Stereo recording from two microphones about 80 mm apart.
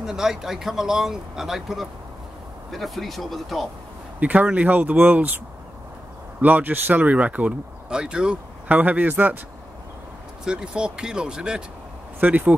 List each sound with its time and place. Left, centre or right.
0.0 s speech: centre
4.2 s speech: centre
6.4 s speech: right
10.4 s speech: centre
12.2 s speech: right